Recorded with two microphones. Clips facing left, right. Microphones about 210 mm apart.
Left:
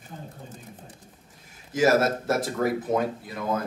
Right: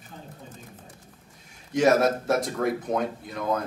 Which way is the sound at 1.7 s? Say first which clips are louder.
Right 1 dB; centre (ahead or behind).